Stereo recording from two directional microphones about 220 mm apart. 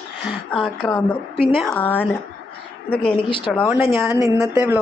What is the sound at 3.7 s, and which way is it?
Speech, 10° right (ahead or behind).